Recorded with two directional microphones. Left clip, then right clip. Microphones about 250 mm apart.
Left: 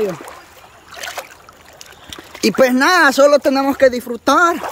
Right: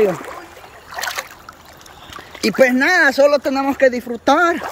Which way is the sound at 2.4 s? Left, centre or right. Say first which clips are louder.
Left 1 dB; left.